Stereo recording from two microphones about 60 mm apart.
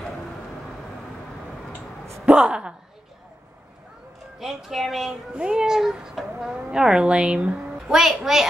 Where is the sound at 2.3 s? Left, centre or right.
Centre.